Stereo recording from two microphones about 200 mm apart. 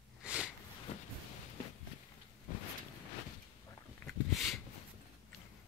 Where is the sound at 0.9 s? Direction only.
30° left (ahead or behind).